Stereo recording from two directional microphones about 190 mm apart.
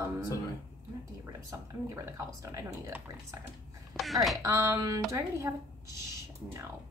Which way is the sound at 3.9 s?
Centre (ahead or behind).